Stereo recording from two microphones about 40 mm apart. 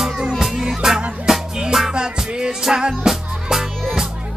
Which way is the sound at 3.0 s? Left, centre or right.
Centre.